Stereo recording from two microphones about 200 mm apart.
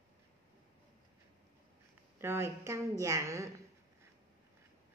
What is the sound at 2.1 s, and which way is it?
Speech, 10° right (ahead or behind).